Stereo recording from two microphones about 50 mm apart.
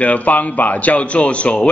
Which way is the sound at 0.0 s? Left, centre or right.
Left.